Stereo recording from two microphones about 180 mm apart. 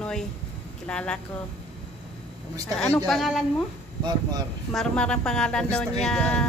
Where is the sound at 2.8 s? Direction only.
5° left (ahead or behind).